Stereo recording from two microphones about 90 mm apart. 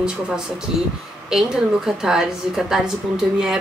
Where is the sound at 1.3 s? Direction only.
5° right (ahead or behind).